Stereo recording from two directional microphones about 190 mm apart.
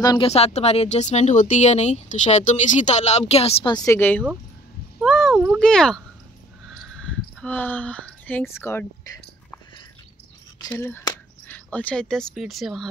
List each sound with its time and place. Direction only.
0.0 s speech: 20° left (ahead or behind)
0.3 s speech: 35° left (ahead or behind); by 4.2 s 10° left (ahead or behind)
5.0 s speech: centre (ahead or behind)
6.8 s a sound: 5° left (ahead or behind)
10.6 s speech: 10° left (ahead or behind)